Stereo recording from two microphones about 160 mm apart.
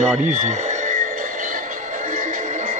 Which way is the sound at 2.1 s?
55° right (ahead or behind).